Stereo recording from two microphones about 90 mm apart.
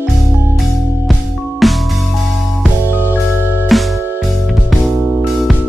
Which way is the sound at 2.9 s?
25° right (ahead or behind).